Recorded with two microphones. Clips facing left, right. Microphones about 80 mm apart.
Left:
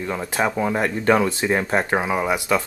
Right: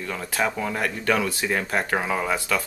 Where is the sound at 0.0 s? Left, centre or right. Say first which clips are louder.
Left 3 dB; left.